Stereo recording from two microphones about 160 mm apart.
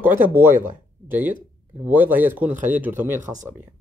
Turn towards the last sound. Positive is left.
turn(degrees=-10)  # may be behind; listen again after turning